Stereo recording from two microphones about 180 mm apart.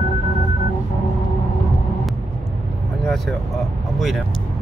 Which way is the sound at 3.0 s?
Centre (ahead or behind).